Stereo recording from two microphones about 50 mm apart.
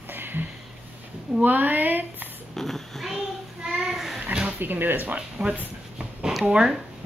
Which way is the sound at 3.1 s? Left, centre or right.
Centre.